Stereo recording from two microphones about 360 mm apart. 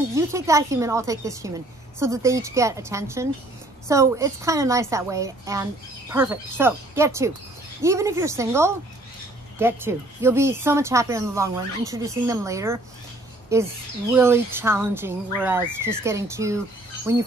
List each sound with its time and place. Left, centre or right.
0.1 s a woman's voice: centre